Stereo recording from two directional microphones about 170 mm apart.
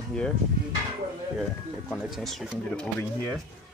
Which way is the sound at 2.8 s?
10° left (ahead or behind).